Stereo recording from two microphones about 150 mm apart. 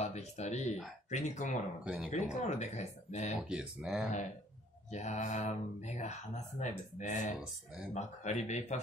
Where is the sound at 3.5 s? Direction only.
5° right (ahead or behind).